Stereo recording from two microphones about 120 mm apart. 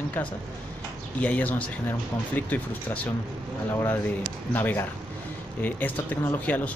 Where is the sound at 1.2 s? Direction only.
10° left (ahead or behind).